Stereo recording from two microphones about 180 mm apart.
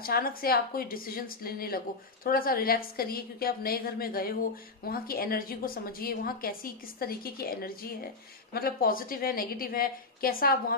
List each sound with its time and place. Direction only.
0.0 s a woman's voice: 55° left (ahead or behind)